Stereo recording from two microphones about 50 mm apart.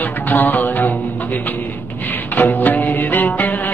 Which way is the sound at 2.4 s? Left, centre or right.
Left.